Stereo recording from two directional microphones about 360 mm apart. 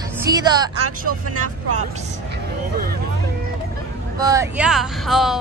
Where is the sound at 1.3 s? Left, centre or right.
Right.